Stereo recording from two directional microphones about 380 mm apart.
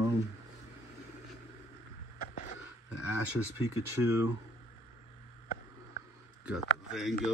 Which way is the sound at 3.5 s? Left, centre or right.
Centre.